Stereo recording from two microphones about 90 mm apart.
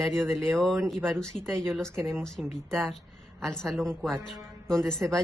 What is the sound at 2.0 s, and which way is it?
Speech, 30° right (ahead or behind).